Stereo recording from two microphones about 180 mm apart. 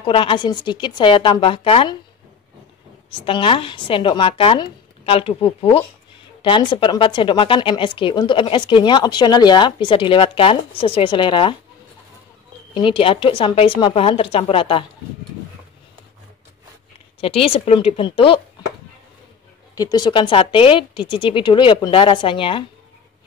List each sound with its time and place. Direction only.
0.0 s speech: 30° left (ahead or behind)
3.1 s speech: 30° left (ahead or behind)
12.7 s speech: 30° left (ahead or behind)
17.2 s speech: 30° left (ahead or behind)
19.8 s speech: 25° left (ahead or behind)